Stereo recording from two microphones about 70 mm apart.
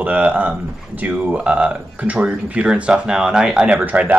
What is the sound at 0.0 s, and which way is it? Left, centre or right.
Speech, right.